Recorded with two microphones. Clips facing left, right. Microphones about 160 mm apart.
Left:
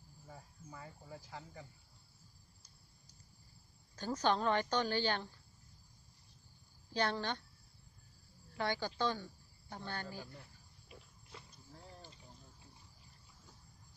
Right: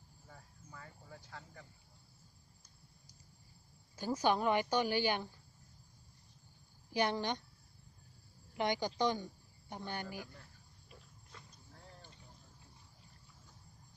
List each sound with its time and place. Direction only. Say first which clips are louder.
0.3 s cricket: left 3 dB; 15° left (ahead or behind)
3.9 s speech: right 1 dB; 10° right (ahead or behind)
6.9 s speech: right 2 dB; 15° right (ahead or behind)
8.5 s speech: right 3 dB; 15° right (ahead or behind)